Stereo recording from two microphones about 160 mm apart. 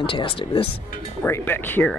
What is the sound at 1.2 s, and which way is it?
Speech, 10° left (ahead or behind).